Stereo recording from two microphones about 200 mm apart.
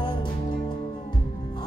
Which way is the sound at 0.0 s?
25° left (ahead or behind).